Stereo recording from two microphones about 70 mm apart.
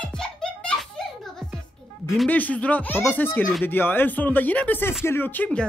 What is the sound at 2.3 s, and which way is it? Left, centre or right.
Speech, left.